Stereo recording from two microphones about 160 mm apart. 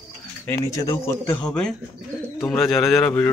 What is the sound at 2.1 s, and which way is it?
Bird, 5° right (ahead or behind).